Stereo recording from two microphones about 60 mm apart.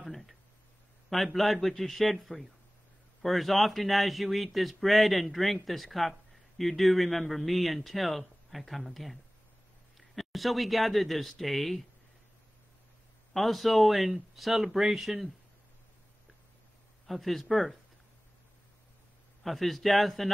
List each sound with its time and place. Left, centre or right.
0.0 s a sound: centre
1.1 s speech: centre
13.3 s speech: centre
17.0 s speech: centre
19.4 s speech: centre